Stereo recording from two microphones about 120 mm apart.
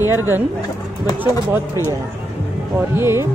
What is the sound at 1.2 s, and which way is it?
Speech, 15° right (ahead or behind).